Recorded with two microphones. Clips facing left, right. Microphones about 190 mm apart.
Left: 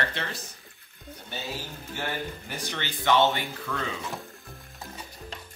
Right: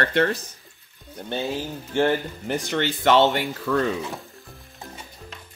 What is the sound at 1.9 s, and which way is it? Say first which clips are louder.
Speech: right 12 dB; 65° right (ahead or behind).